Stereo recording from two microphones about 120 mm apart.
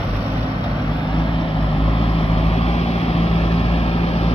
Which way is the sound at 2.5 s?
60° left (ahead or behind).